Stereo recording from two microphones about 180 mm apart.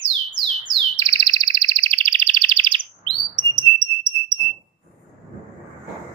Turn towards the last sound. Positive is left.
turn(degrees=-25)  # may be behind; listen again after turning